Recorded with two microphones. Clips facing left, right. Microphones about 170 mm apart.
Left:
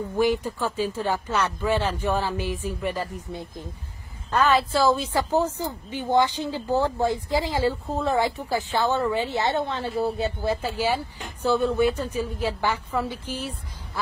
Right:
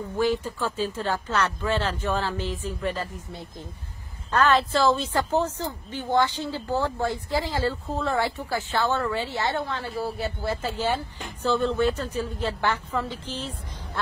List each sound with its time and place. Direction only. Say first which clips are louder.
0.2 s a woman's voice: left 2 dB; 15° left (ahead or behind)